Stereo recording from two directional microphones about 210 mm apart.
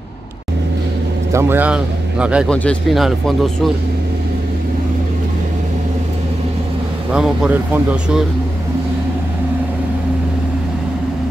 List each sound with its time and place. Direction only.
1.3 s speech: 10° right (ahead or behind)
7.1 s speech: 5° right (ahead or behind)